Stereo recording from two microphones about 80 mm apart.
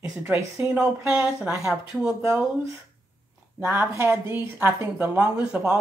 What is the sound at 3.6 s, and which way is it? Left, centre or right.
A woman's voice, right.